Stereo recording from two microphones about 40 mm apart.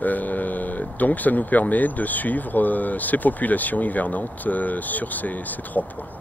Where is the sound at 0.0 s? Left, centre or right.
Left.